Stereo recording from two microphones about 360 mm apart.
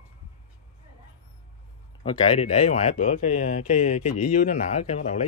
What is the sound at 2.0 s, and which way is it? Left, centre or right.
Speech, centre.